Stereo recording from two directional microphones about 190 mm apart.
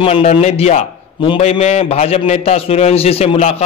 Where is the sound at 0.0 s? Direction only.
30° left (ahead or behind).